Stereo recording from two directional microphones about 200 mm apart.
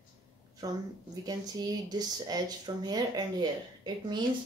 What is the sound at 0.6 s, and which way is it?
Speech, 20° right (ahead or behind).